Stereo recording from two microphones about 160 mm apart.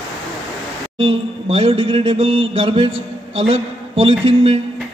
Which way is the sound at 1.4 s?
35° right (ahead or behind).